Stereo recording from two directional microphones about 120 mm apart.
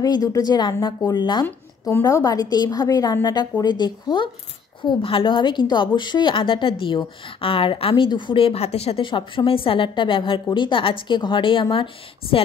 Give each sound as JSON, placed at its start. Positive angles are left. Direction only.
{"t": 0.0, "sound": "a woman's voice", "side_deg": 30}
{"t": 1.4, "sound": "a woman's voice", "side_deg": 20}